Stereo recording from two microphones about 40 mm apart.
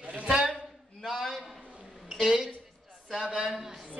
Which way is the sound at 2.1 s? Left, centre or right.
Centre.